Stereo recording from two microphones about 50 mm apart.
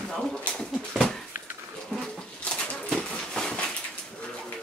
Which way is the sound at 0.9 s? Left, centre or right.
Centre.